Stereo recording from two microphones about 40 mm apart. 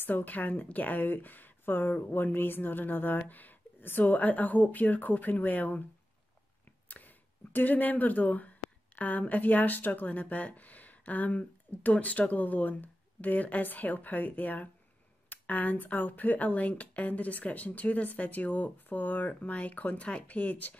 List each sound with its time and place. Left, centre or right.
0.0 s speech: left
6.9 s speech: left
20.0 s speech: left
20.2 s speech: left